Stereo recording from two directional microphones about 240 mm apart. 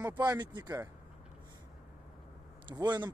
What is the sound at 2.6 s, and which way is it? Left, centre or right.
Speech, centre.